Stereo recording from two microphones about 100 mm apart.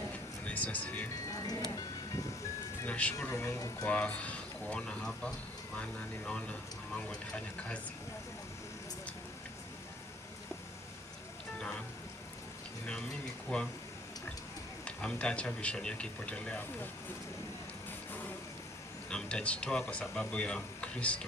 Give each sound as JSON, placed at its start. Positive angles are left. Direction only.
{"t": 0.5, "sound": "speech", "side_deg": 15}
{"t": 1.3, "sound": "music", "side_deg": 40}
{"t": 2.8, "sound": "speech", "side_deg": 15}
{"t": 3.8, "sound": "speech", "side_deg": 15}
{"t": 13.5, "sound": "speech", "side_deg": 10}
{"t": 14.9, "sound": "speech", "side_deg": 10}
{"t": 19.0, "sound": "speech", "side_deg": 10}